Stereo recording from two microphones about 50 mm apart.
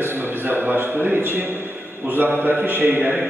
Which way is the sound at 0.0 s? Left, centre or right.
Right.